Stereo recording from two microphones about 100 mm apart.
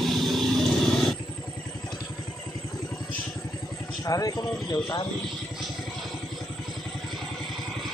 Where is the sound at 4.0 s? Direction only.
35° left (ahead or behind).